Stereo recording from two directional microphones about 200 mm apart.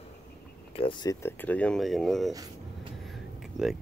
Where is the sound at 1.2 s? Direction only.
10° left (ahead or behind).